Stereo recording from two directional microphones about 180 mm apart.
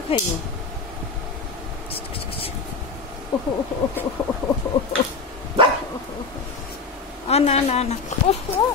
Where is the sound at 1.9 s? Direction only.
30° left (ahead or behind).